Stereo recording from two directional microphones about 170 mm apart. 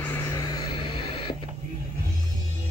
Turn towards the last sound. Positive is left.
turn(degrees=30)  # may be behind; listen again after turning